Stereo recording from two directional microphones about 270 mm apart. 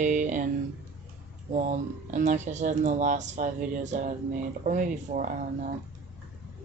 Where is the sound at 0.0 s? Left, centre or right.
Right.